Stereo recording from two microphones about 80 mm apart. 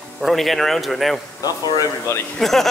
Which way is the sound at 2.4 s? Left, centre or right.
Centre.